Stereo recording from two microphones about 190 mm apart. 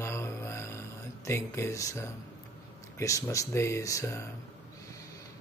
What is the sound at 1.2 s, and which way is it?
Speech, 15° left (ahead or behind).